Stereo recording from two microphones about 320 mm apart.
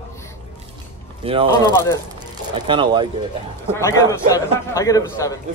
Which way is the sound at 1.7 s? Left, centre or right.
Centre.